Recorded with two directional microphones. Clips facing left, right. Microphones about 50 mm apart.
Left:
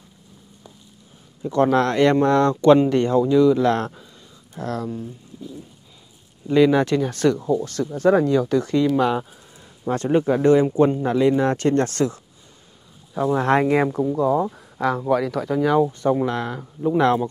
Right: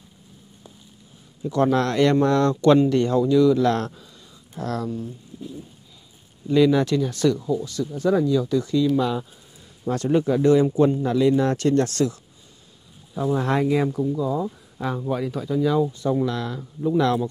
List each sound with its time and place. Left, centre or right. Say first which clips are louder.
1.4 s speech: left 2 dB; left
4.8 s speech: even; centre
6.4 s speech: left 2 dB; left
9.8 s speech: left 2 dB; left